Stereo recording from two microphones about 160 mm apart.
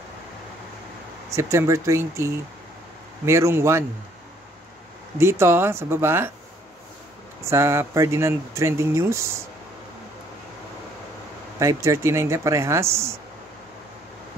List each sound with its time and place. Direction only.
1.3 s speech: 20° right (ahead or behind)
5.2 s speech: 15° right (ahead or behind)
7.4 s speech: 15° right (ahead or behind)
11.6 s speech: 20° right (ahead or behind)